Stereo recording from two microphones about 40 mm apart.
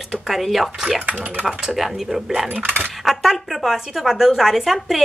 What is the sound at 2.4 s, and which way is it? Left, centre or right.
Speech, right.